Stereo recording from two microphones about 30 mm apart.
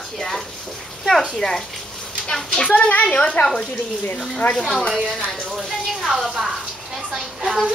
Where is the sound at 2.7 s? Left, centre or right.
Left.